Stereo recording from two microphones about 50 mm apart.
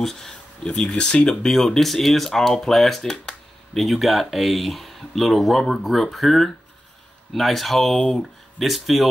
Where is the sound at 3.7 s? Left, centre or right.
Centre.